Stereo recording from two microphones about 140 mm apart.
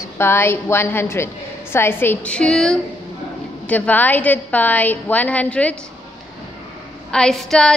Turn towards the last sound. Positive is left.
turn(degrees=5)  # may be behind; listen again after turning